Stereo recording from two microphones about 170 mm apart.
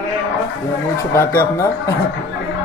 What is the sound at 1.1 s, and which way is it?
Speech, 15° left (ahead or behind).